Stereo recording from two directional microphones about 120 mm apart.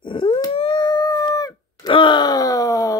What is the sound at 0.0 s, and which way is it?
Howl, 45° left (ahead or behind).